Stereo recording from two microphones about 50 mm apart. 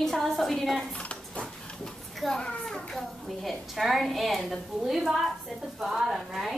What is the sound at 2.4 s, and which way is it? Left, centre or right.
Children playing, centre.